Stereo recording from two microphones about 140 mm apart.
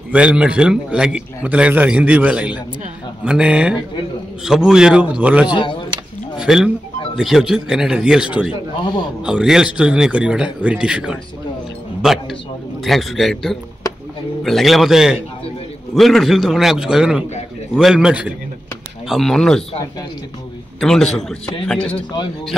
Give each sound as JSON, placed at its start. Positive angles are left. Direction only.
{"t": 0.1, "sound": "a man's voice", "side_deg": -5}
{"t": 5.5, "sound": "speech", "side_deg": 35}
{"t": 6.3, "sound": "a sound", "side_deg": -5}
{"t": 7.2, "sound": "a man's voice", "side_deg": 0}
{"t": 12.0, "sound": "a sound", "side_deg": 0}
{"t": 12.8, "sound": "speech", "side_deg": 0}
{"t": 20.8, "sound": "speech", "side_deg": 5}